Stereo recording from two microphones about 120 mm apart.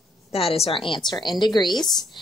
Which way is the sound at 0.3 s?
55° left (ahead or behind).